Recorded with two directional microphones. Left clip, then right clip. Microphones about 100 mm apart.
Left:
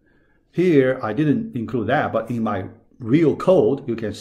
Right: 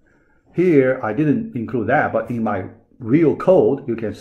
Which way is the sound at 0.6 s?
35° left (ahead or behind).